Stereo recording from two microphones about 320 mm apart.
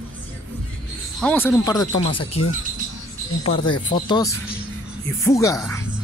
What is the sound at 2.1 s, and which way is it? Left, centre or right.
Speech, left.